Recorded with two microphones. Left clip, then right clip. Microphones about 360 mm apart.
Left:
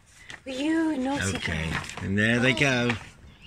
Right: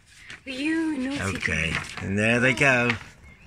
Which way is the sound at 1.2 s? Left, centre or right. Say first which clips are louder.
Right 3 dB; centre.